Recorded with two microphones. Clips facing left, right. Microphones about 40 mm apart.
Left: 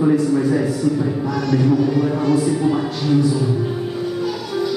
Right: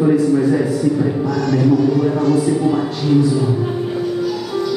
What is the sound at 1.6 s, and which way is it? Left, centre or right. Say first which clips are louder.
A man's voice: right 4 dB; centre.